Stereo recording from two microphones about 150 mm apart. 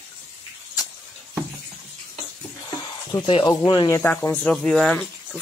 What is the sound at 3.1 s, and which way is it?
Speech, 35° left (ahead or behind).